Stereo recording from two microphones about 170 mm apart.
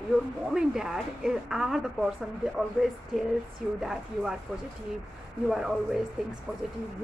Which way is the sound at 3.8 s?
Centre (ahead or behind).